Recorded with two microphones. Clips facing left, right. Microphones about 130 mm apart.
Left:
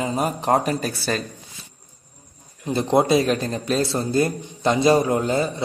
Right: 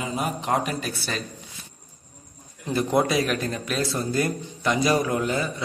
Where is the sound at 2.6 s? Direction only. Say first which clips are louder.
Left 4 dB; 25° left (ahead or behind).